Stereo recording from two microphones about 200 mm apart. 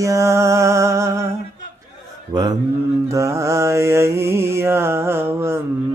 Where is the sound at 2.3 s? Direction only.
20° right (ahead or behind).